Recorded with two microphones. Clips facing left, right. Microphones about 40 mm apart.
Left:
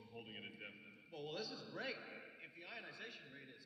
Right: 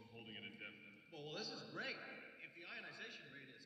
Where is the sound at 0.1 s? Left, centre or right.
Centre.